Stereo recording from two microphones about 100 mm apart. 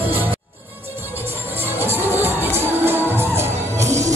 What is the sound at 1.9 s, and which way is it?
Music, 20° right (ahead or behind).